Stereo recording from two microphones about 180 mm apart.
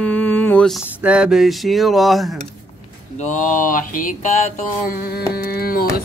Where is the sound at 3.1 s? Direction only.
40° left (ahead or behind).